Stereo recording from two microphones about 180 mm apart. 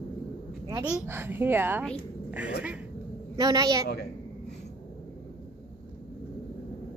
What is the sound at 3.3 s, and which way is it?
Speech, 20° right (ahead or behind).